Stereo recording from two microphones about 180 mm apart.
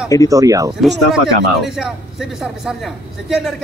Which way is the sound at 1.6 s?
5° right (ahead or behind).